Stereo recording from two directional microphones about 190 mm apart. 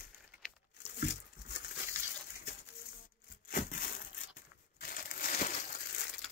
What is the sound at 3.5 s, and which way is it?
Crushing, 45° left (ahead or behind).